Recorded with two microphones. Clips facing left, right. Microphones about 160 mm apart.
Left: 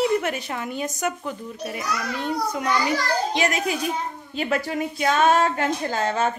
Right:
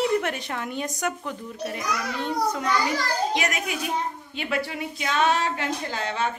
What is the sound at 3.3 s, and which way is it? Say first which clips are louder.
A child's voice: left 4 dB; 30° left (ahead or behind).